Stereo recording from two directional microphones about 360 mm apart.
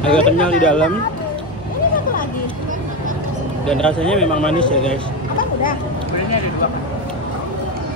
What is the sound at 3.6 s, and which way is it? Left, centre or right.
Speech, centre.